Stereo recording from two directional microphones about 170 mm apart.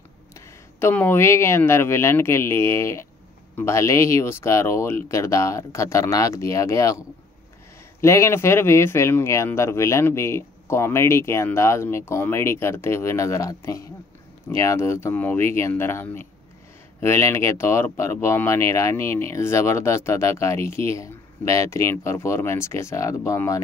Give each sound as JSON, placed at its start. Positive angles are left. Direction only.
{"t": 0.7, "sound": "speech", "side_deg": 15}